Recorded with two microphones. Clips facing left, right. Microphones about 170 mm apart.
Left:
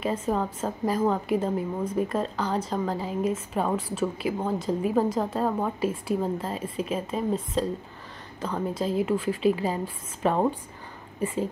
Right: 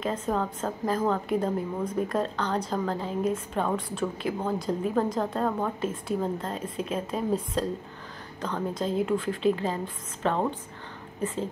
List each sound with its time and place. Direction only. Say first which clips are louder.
0.0 s a woman's voice: left 1 dB; 10° left (ahead or behind)